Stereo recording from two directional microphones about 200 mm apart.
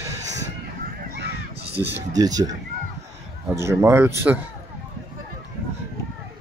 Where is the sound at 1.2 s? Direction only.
55° right (ahead or behind).